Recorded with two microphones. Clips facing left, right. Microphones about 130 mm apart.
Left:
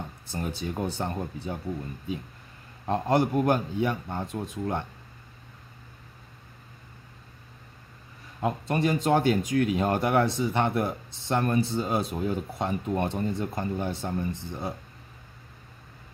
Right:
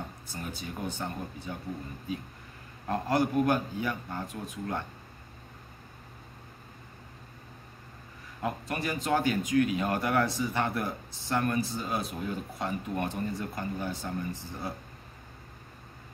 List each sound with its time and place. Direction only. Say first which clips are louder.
0.3 s speech: left 8 dB; 25° left (ahead or behind)
2.9 s speech: left 3 dB; 25° left (ahead or behind)
8.4 s speech: left 6 dB; 25° left (ahead or behind)